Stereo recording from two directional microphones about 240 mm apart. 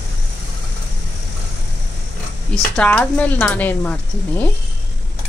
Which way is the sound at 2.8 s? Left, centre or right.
Centre.